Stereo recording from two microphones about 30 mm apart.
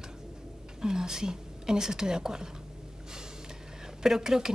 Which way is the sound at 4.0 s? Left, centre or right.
Centre.